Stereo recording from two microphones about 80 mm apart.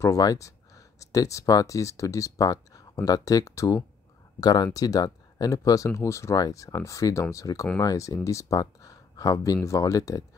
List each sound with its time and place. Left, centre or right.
0.0 s speech: left
4.4 s speech: left
6.3 s speech: left